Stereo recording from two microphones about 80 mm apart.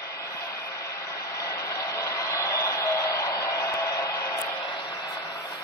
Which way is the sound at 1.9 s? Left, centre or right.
Left.